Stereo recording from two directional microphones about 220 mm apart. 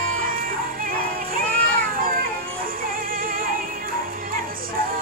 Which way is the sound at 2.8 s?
40° right (ahead or behind).